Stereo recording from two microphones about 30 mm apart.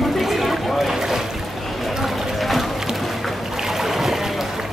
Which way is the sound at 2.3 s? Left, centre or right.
Centre.